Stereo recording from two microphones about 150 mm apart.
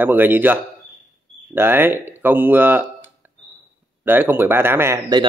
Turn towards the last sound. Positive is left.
turn(degrees=-15)  # may be behind; listen again after turning